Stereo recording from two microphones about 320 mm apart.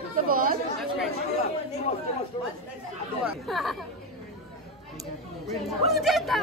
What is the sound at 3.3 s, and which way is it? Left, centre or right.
Speech, centre.